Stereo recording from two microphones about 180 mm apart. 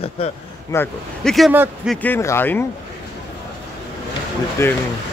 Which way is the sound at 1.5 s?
10° right (ahead or behind).